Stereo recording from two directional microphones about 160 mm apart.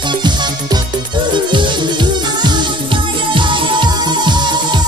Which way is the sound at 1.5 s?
30° right (ahead or behind).